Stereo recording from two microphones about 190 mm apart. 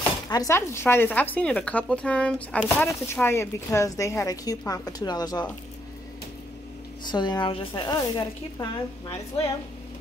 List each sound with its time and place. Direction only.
0.3 s speech: 15° left (ahead or behind)
7.1 s speech: 25° left (ahead or behind)